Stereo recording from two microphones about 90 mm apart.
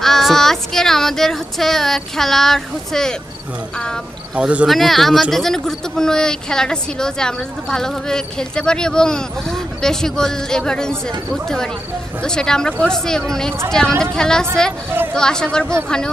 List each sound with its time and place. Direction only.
0.0 s speech: 5° left (ahead or behind)
4.4 s speech: 15° right (ahead or behind)
4.6 s speech: centre (ahead or behind)